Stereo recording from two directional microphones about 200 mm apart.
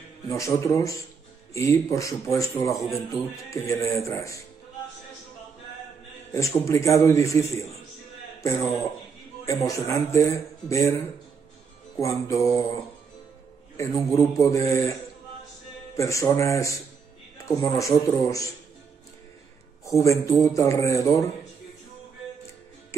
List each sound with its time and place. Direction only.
0.3 s speech: 15° left (ahead or behind)
6.3 s speech: 15° left (ahead or behind)
9.5 s speech: 15° left (ahead or behind)
12.0 s speech: 15° left (ahead or behind)
13.7 s speech: 15° left (ahead or behind)
16.0 s speech: 15° left (ahead or behind)
20.0 s speech: 15° left (ahead or behind)